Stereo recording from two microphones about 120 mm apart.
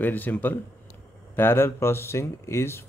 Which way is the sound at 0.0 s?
15° left (ahead or behind).